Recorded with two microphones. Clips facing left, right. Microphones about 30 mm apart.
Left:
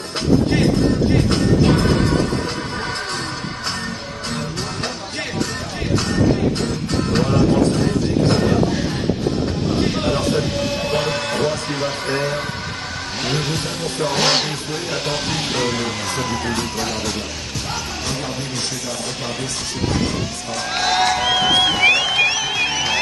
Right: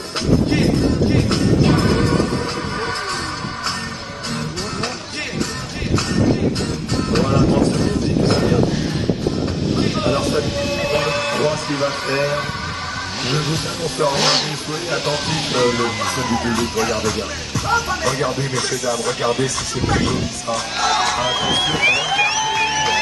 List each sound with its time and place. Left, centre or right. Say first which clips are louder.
1.1 s music: even; centre
7.1 s music: right 1 dB; centre
10.0 s music: right 1 dB; centre
12.2 s speech: right 2 dB; centre
21.1 s music: left 2 dB; centre